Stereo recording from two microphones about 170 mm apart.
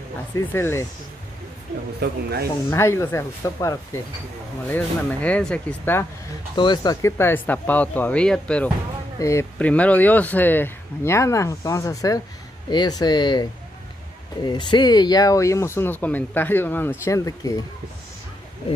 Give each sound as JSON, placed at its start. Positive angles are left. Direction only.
{"t": 0.5, "sound": "speech", "side_deg": 15}
{"t": 2.0, "sound": "speech", "side_deg": -75}
{"t": 2.7, "sound": "speech", "side_deg": 15}
{"t": 6.5, "sound": "speech", "side_deg": 25}
{"t": 9.2, "sound": "speech", "side_deg": 15}